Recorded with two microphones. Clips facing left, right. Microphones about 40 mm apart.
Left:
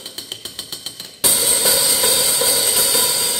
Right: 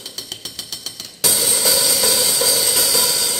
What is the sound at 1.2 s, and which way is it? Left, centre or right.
Music, left.